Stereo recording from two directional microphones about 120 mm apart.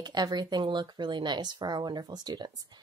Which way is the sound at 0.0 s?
35° right (ahead or behind).